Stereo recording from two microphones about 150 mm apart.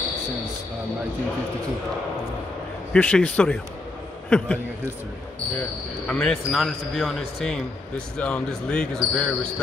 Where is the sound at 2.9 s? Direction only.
10° left (ahead or behind).